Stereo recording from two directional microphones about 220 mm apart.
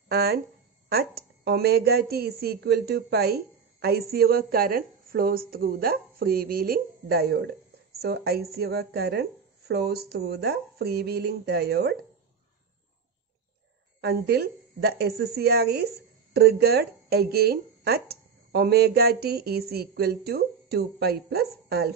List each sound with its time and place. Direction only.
0.1 s a woman's voice: 45° right (ahead or behind)
14.0 s a woman's voice: 45° right (ahead or behind)